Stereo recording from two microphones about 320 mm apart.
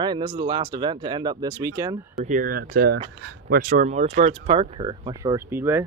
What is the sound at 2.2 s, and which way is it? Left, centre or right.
Speech, right.